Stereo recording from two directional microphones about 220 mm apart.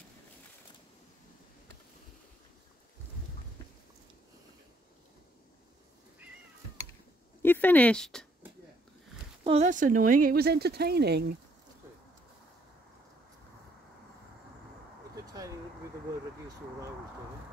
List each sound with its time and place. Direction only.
7.4 s speech: 10° left (ahead or behind)
9.4 s speech: 25° right (ahead or behind); by 11.3 s 50° right (ahead or behind)